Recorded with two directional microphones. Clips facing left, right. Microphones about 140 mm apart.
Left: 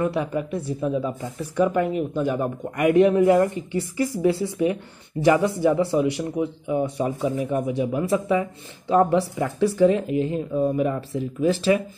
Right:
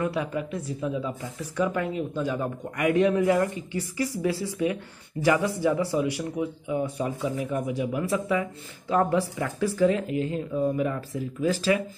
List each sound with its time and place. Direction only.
0.0 s speech: 25° left (ahead or behind)